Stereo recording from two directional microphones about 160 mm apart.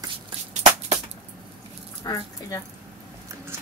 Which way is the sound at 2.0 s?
25° left (ahead or behind).